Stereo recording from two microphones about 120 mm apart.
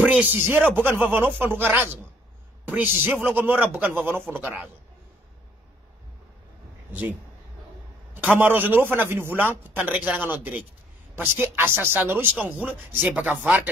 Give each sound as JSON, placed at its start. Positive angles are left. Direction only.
{"t": 0.0, "sound": "a man's voice", "side_deg": -15}
{"t": 6.9, "sound": "a man's voice", "side_deg": -15}